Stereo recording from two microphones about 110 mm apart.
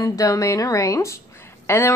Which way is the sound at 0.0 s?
30° left (ahead or behind).